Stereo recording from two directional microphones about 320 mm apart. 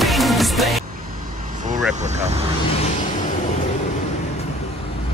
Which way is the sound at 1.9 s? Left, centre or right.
Right.